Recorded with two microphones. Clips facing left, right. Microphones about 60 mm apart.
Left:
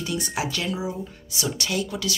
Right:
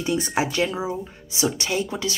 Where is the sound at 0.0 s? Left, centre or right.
Right.